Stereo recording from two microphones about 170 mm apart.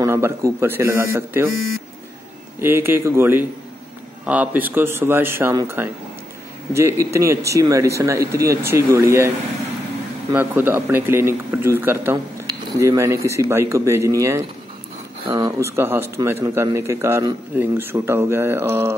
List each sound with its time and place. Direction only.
0.0 s speech: 15° right (ahead or behind)
2.6 s speech: 15° right (ahead or behind)
10.3 s speech: 10° right (ahead or behind)